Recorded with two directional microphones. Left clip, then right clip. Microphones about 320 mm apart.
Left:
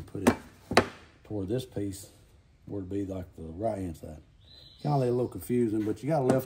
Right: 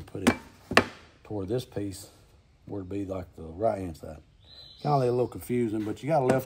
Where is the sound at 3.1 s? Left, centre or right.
Centre.